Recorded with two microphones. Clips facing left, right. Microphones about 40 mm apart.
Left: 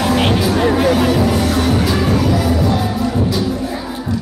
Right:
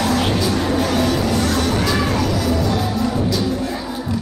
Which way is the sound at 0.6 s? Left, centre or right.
Left.